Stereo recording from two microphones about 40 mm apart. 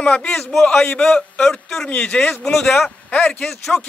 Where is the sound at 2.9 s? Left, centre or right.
Left.